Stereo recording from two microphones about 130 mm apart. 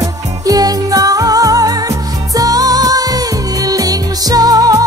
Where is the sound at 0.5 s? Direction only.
30° right (ahead or behind).